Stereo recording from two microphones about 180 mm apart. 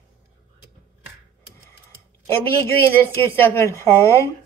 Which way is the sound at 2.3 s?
15° left (ahead or behind).